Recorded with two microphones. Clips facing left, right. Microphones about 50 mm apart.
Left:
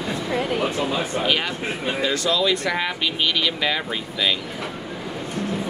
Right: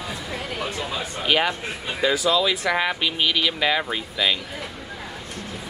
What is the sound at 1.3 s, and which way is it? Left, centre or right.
Speech, centre.